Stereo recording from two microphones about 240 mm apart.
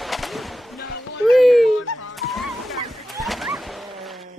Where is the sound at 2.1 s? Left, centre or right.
Centre.